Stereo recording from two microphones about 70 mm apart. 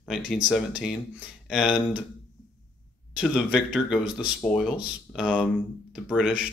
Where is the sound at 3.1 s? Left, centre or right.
Centre.